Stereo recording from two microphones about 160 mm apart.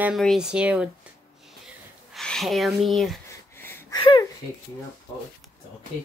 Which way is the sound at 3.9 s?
30° left (ahead or behind).